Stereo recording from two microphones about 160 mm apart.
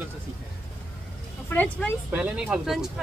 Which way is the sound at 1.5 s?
10° left (ahead or behind).